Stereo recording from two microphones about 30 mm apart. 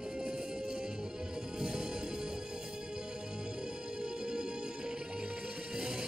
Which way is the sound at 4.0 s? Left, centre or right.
Right.